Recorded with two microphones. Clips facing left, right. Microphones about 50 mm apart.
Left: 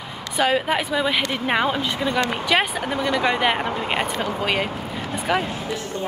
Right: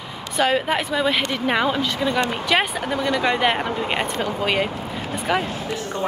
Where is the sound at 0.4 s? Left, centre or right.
Centre.